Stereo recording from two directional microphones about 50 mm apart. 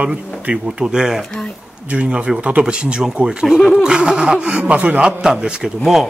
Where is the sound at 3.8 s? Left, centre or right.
Centre.